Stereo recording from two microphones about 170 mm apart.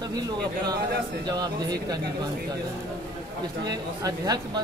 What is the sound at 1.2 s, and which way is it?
Speech, 25° right (ahead or behind).